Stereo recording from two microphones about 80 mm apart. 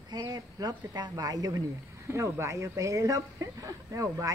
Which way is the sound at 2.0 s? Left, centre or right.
Right.